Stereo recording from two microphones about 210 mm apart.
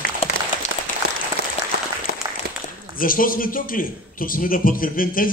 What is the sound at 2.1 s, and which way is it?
Applause, 50° right (ahead or behind).